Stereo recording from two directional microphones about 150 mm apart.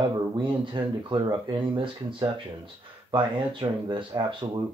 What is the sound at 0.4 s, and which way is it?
Speech, 35° right (ahead or behind).